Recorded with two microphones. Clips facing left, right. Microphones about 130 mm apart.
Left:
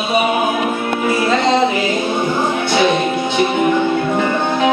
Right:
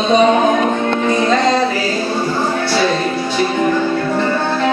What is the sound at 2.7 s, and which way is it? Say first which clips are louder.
Music: left 3 dB; 20° left (ahead or behind).